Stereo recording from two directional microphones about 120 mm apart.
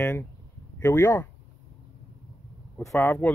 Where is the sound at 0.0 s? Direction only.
20° left (ahead or behind).